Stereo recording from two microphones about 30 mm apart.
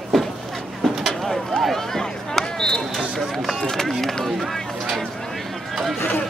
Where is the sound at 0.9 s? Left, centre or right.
Centre.